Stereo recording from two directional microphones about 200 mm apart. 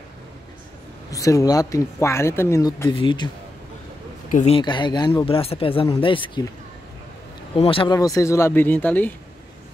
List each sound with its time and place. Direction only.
1.1 s speech: 15° left (ahead or behind)
2.9 s speech: 25° left (ahead or behind)
4.3 s speech: 35° left (ahead or behind)
4.6 s speech: 25° left (ahead or behind)
7.5 s speech: 25° left (ahead or behind); by 9.1 s 10° left (ahead or behind)